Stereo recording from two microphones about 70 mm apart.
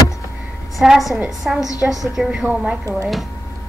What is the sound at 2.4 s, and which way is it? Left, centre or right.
Speech, centre.